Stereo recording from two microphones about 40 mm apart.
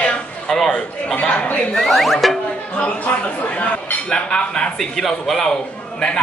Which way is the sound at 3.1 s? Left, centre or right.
Left.